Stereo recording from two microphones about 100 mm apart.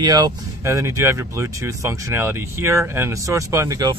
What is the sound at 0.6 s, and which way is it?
Speech, 30° right (ahead or behind).